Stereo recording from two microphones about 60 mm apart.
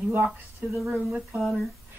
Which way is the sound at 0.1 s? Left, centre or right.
Right.